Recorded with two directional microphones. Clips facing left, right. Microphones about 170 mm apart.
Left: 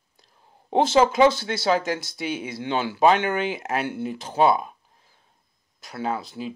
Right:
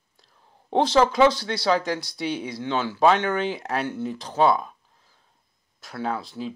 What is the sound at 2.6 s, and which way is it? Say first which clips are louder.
Speech: left 1 dB; 10° left (ahead or behind).